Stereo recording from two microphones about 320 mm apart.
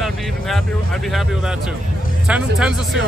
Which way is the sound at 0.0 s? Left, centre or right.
Centre.